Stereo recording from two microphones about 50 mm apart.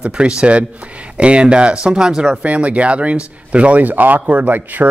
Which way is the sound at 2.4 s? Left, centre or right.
Right.